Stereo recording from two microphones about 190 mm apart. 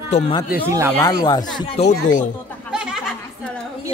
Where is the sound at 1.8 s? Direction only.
35° left (ahead or behind).